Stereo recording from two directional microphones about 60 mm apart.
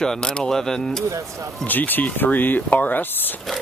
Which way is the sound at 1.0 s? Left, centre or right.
Right.